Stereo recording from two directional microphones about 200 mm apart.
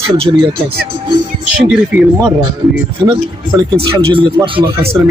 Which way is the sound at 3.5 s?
10° right (ahead or behind).